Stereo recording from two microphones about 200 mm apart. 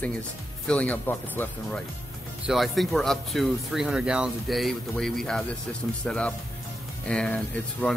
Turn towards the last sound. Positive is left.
turn(degrees=5)  # may be behind; listen again after turning